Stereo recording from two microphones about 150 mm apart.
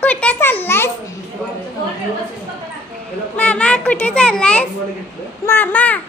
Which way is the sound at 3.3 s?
10° left (ahead or behind).